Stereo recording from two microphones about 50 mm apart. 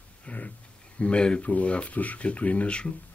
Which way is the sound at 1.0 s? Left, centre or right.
Left.